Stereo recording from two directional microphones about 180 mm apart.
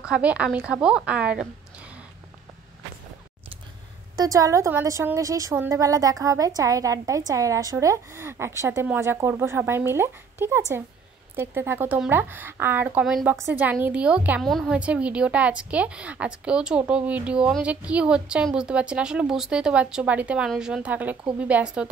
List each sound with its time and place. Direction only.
0.0 s a woman's voice: 5° right (ahead or behind)
4.2 s a woman's voice: 20° right (ahead or behind)